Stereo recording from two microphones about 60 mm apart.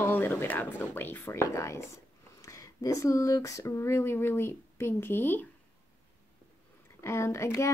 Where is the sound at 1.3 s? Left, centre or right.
Left.